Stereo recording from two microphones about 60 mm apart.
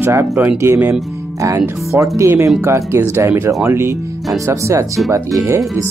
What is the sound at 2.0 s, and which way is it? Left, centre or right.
Speech, right.